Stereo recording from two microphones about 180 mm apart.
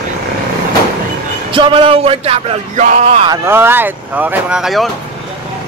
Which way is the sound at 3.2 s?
15° right (ahead or behind).